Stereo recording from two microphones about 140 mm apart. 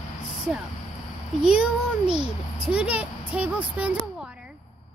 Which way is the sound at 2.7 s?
10° right (ahead or behind).